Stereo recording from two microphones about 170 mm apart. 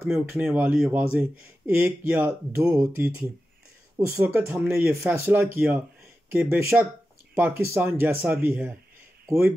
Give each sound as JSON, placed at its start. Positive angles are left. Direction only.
{"t": 0.0, "sound": "speech", "side_deg": -15}
{"t": 4.1, "sound": "speech", "side_deg": -15}